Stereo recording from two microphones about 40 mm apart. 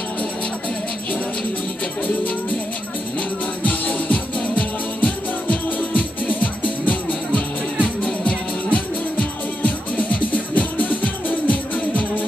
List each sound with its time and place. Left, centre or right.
3.2 s music: left